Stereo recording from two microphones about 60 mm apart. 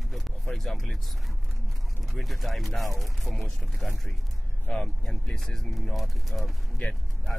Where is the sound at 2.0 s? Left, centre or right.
Centre.